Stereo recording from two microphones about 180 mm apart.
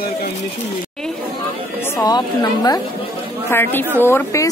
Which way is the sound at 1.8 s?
15° left (ahead or behind).